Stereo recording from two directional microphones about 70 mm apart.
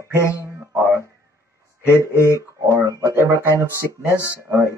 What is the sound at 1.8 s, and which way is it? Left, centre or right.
Speech, right.